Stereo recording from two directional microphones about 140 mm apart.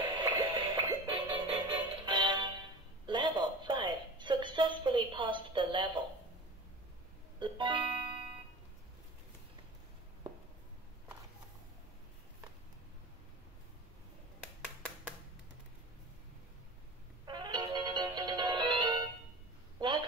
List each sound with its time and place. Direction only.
0.0 s music: 30° right (ahead or behind)
3.1 s a sound: 35° right (ahead or behind)
7.3 s music: 35° right (ahead or behind)
17.3 s music: 30° right (ahead or behind)